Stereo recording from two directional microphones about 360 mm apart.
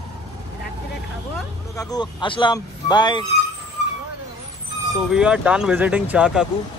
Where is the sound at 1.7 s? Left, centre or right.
Centre.